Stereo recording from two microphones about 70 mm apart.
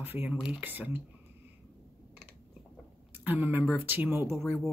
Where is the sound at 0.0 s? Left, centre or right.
Right.